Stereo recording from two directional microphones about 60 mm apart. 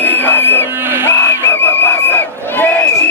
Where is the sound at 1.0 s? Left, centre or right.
Left.